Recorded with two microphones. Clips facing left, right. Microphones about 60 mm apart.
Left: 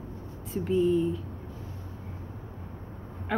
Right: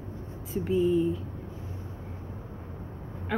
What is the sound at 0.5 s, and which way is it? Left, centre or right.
Speech, centre.